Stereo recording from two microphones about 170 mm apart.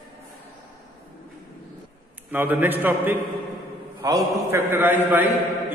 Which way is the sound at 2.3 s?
10° right (ahead or behind).